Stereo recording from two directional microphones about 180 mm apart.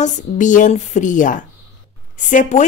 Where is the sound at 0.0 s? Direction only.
45° left (ahead or behind).